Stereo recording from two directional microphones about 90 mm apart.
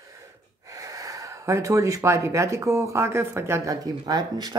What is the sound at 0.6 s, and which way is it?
Speech, 40° right (ahead or behind).